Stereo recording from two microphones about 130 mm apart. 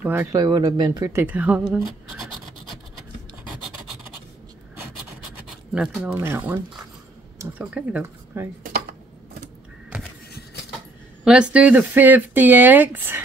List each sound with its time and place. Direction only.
0.0 s speech: 15° right (ahead or behind)
0.3 s speech: 30° right (ahead or behind)
1.2 s speech: 10° right (ahead or behind)
5.8 s speech: 5° right (ahead or behind)
9.9 s a sound: 10° right (ahead or behind)
11.2 s speech: 10° right (ahead or behind)